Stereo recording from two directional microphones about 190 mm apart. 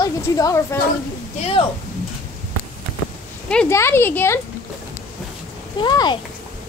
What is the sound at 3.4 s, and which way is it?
Speech, 10° left (ahead or behind).